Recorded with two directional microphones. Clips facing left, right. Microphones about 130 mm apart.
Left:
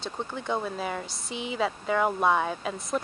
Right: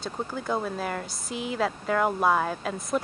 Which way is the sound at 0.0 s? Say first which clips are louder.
Right 2 dB; 5° right (ahead or behind).